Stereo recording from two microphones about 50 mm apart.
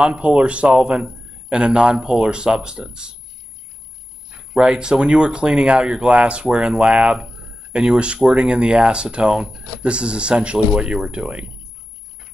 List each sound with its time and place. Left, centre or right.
0.0 s a man's voice: right
4.3 s a man's voice: centre